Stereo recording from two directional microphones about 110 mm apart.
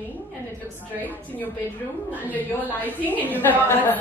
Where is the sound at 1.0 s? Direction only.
15° left (ahead or behind).